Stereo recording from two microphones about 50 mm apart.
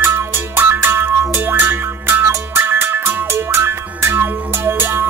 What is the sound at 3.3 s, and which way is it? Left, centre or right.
Music, right.